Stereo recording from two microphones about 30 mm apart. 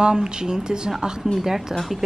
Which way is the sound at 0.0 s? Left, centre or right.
Right.